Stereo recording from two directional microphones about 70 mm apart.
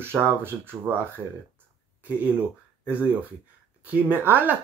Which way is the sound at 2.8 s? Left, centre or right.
Right.